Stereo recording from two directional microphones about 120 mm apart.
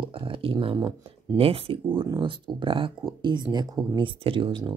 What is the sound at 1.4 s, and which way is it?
Speech, 50° right (ahead or behind).